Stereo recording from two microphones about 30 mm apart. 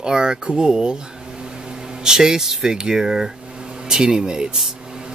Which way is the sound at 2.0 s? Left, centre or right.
Right.